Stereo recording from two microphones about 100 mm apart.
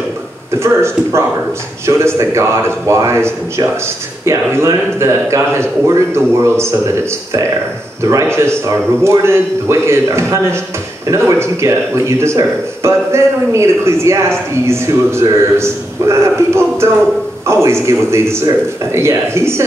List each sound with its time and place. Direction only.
0.6 s speech: 25° right (ahead or behind)